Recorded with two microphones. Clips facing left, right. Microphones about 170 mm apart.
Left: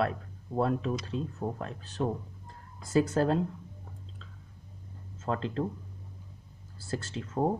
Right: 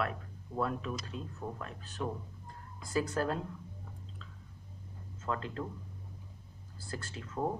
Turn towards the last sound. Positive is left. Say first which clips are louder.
# left 6 dB
turn(degrees=30)  # may be behind; listen again after turning